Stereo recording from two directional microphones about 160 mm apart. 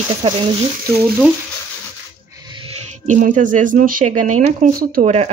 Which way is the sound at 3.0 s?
50° right (ahead or behind).